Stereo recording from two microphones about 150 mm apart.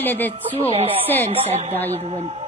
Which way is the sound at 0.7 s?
40° right (ahead or behind).